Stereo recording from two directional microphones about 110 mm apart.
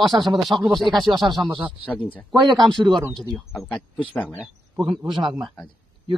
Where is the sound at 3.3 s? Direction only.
5° left (ahead or behind).